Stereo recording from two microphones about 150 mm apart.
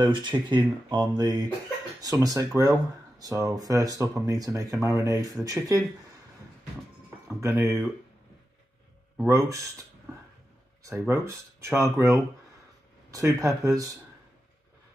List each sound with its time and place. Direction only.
0.0 s speech: 30° right (ahead or behind)
7.2 s speech: 15° right (ahead or behind)
9.1 s speech: 15° right (ahead or behind)